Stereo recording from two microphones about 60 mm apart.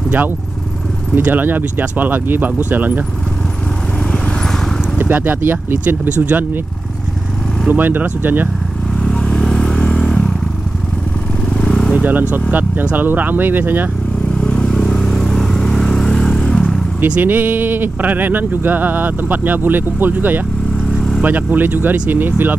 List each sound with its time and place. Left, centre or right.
1.2 s speech: right
4.9 s speech: right
7.7 s speech: right
9.0 s vehicle: centre
11.4 s vehicle: centre
12.0 s speech: right
14.4 s vehicle: centre
17.2 s speech: right